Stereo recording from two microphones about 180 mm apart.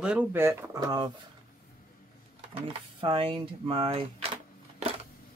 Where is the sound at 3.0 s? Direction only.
30° right (ahead or behind).